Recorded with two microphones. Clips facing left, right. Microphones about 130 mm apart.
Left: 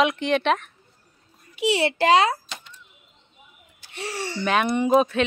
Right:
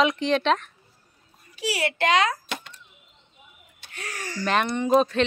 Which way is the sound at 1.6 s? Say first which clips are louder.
Left 5 dB; 25° left (ahead or behind).